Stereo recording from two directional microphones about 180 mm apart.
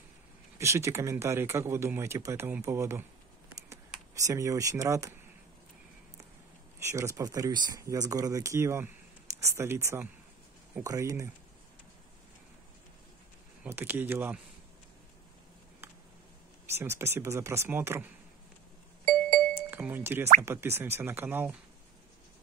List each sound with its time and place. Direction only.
0.6 s speech: 15° right (ahead or behind)
4.2 s speech: 15° right (ahead or behind)
6.9 s speech: 15° right (ahead or behind)
13.7 s speech: 10° right (ahead or behind)
16.7 s speech: 15° right (ahead or behind)
19.7 s speech: 10° right (ahead or behind)